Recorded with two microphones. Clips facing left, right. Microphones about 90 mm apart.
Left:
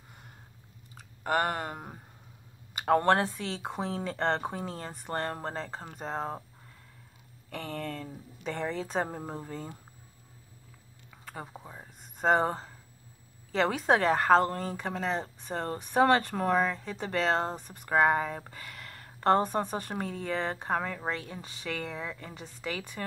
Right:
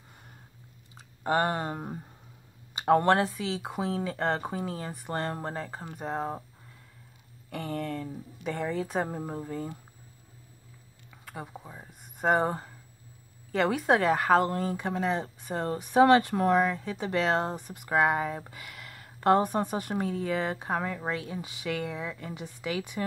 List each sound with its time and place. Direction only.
1.2 s a sound: 20° right (ahead or behind)
2.9 s speech: 15° right (ahead or behind)
7.4 s speech: 15° right (ahead or behind)
9.1 s speech: centre (ahead or behind)
11.2 s speech: 5° right (ahead or behind)
12.2 s speech: 10° right (ahead or behind)
18.5 s a sound: 10° right (ahead or behind)
19.2 s speech: 15° right (ahead or behind)